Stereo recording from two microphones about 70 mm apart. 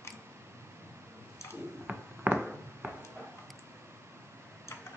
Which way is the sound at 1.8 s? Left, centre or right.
Centre.